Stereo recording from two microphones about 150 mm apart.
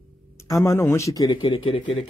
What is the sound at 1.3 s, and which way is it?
Speech, 35° left (ahead or behind).